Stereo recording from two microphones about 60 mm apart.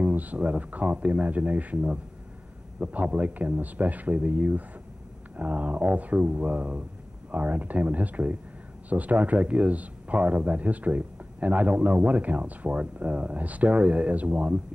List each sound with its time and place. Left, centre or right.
0.0 s a man's voice: right